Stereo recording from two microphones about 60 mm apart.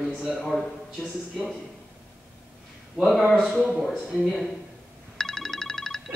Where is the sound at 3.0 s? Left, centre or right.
Centre.